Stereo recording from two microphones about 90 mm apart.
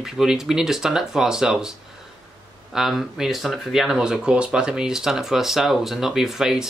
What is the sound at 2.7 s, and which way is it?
Speech, 5° right (ahead or behind).